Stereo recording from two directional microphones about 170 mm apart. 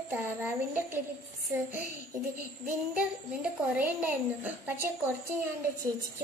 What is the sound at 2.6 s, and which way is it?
Speech, 10° right (ahead or behind).